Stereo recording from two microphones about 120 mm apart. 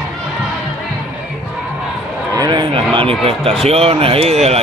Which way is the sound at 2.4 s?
40° right (ahead or behind).